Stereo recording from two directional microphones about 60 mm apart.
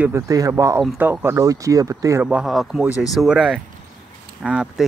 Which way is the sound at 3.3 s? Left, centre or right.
Centre.